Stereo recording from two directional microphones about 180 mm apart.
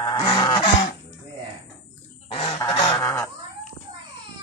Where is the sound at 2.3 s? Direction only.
30° left (ahead or behind).